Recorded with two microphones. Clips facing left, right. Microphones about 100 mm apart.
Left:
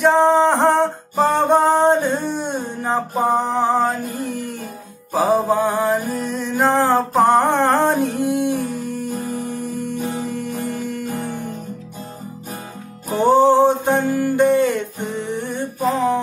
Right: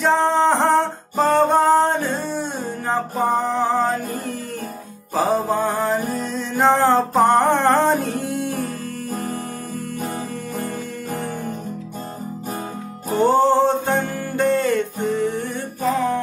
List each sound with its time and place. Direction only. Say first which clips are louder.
0.0 s music: left 3 dB; 10° left (ahead or behind)
5.1 s music: left 3 dB; 5° left (ahead or behind)
13.1 s music: left 2 dB; 5° left (ahead or behind)